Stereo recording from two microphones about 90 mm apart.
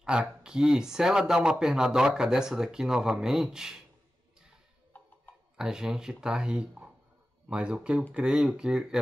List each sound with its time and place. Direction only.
0.0 s speech: 10° right (ahead or behind)
4.9 s tick-tock: 20° left (ahead or behind)
5.6 s speech: 5° right (ahead or behind)